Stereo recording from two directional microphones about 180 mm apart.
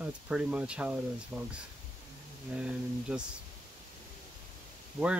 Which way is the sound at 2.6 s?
5° right (ahead or behind).